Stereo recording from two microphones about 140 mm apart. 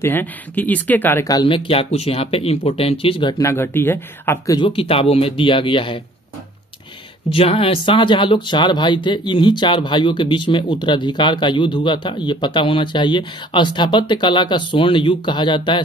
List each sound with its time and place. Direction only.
0.0 s speech: 15° left (ahead or behind)
1.2 s speech: 30° left (ahead or behind)
3.4 s speech: 15° left (ahead or behind)
4.6 s speech: 40° left (ahead or behind)
7.3 s speech: 40° left (ahead or behind)